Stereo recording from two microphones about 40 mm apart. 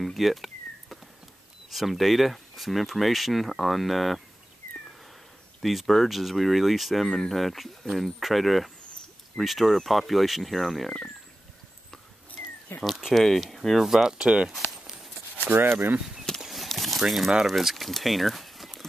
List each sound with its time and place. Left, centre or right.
0.0 s a sound: centre
1.7 s speech: centre
5.6 s speech: centre
12.7 s speech: left
13.1 s speech: centre
13.7 s speech: centre
14.1 s speech: right
15.4 s speech: right
16.3 s horse: centre
17.5 s speech: centre